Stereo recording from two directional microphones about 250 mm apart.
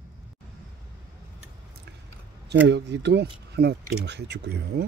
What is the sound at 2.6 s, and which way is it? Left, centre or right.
Speech, right.